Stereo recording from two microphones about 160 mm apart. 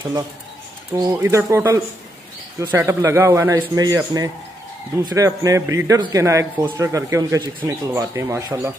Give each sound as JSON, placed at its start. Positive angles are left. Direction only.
{"t": 0.9, "sound": "a man's voice", "side_deg": -20}